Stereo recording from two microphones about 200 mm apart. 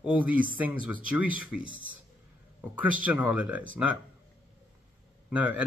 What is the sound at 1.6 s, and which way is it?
Speech, 80° right.